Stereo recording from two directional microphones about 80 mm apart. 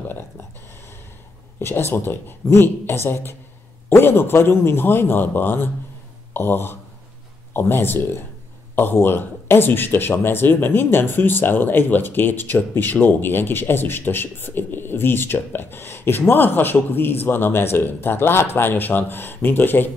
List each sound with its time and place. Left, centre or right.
1.6 s speech: left